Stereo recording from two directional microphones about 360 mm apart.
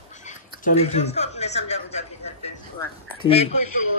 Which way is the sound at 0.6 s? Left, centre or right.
Centre.